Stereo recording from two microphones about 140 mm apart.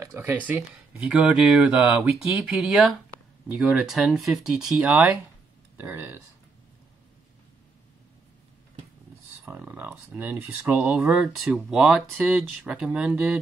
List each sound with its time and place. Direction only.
0.0 s speech: 15° right (ahead or behind)
9.4 s speech: 10° right (ahead or behind)